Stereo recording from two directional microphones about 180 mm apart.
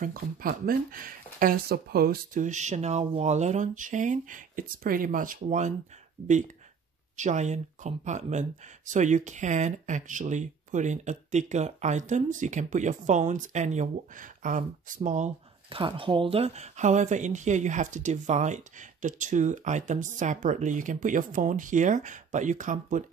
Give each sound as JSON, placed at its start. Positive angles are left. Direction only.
{"t": 0.0, "sound": "speech", "side_deg": -50}